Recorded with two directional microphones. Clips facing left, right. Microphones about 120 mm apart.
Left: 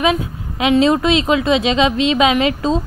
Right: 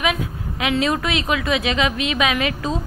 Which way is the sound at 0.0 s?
25° left (ahead or behind).